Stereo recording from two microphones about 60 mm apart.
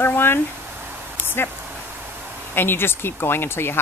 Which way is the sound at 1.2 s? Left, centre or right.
Left.